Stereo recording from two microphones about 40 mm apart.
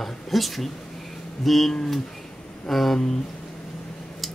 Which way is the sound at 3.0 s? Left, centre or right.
Centre.